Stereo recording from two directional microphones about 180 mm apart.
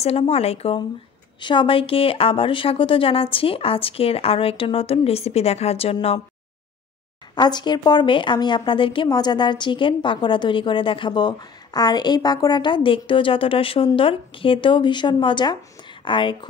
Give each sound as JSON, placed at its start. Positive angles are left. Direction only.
{"t": 0.0, "sound": "speech", "side_deg": 35}
{"t": 7.3, "sound": "a woman's voice", "side_deg": 25}